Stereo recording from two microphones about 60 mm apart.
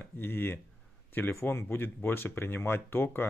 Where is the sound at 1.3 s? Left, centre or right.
Left.